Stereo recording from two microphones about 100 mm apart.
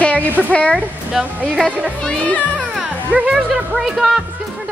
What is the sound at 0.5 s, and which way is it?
Speech, 10° left (ahead or behind).